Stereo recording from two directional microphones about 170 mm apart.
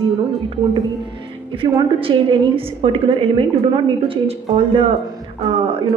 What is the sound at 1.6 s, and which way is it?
A woman's voice, 30° right (ahead or behind).